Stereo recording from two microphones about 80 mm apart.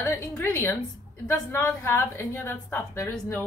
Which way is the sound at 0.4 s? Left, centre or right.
Left.